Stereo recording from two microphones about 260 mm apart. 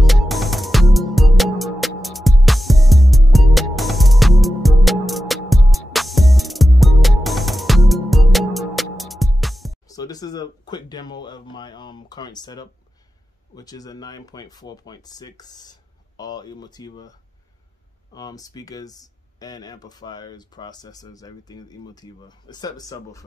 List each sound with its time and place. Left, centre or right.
0.0 s music: centre
9.8 s a sound: centre
13.6 s speech: centre
18.1 s speech: centre